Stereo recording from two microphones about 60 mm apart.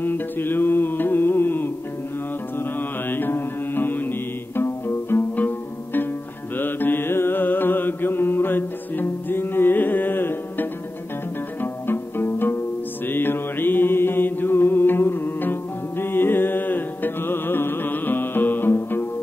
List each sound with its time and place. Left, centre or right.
0.0 s music: left
2.6 s mantra: left
6.5 s mantra: left
11.6 s music: left